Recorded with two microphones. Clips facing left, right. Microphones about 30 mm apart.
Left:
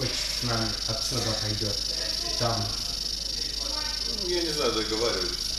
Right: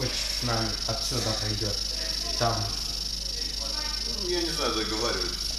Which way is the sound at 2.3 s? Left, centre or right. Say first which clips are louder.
Right 2 dB; left.